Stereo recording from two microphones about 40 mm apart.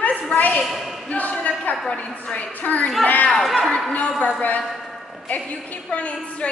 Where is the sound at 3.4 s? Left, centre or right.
Centre.